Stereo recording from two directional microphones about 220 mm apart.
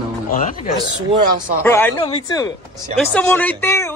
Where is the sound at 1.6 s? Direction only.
10° left (ahead or behind).